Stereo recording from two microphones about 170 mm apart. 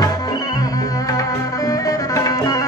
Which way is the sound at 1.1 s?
20° left (ahead or behind).